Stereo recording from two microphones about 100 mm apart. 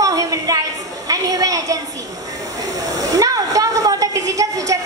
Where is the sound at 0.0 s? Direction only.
35° right (ahead or behind).